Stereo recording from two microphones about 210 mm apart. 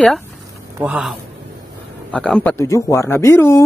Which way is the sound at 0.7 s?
5° right (ahead or behind).